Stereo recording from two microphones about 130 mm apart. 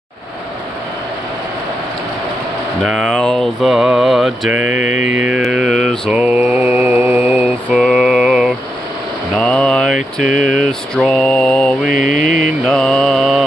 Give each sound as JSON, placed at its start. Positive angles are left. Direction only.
{"t": 2.8, "sound": "mantra", "side_deg": 0}
{"t": 4.7, "sound": "mantra", "side_deg": 70}
{"t": 5.2, "sound": "mantra", "side_deg": -5}
{"t": 9.4, "sound": "a sound", "side_deg": 10}
{"t": 10.1, "sound": "mantra", "side_deg": 5}
{"t": 11.9, "sound": "mantra", "side_deg": 90}
{"t": 12.6, "sound": "mantra", "side_deg": 10}